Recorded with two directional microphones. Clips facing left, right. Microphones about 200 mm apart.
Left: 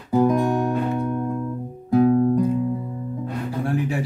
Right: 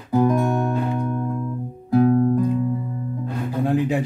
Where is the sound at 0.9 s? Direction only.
5° left (ahead or behind).